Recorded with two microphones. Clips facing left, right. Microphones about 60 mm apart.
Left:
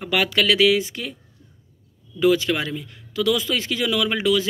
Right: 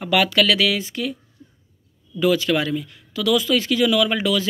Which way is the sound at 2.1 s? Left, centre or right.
Left.